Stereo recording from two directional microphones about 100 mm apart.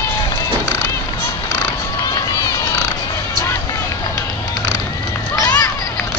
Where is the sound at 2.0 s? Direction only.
35° left (ahead or behind).